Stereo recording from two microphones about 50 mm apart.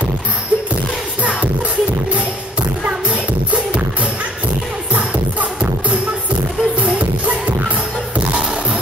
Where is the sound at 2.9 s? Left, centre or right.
Right.